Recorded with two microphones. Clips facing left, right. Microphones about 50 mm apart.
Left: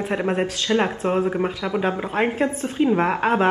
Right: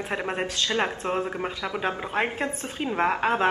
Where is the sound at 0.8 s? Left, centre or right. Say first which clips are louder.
Left 6 dB; centre.